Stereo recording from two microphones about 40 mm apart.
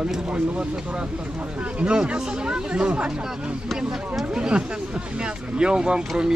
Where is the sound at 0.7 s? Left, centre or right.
Right.